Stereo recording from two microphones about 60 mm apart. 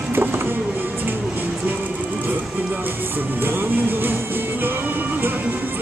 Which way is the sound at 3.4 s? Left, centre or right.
Right.